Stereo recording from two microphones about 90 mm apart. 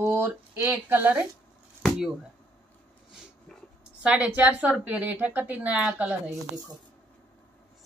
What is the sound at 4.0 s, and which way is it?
Speech, 10° right (ahead or behind).